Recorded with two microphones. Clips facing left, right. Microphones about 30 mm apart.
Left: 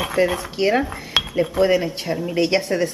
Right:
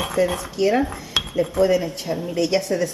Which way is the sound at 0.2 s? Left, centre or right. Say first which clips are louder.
Left 1 dB; left.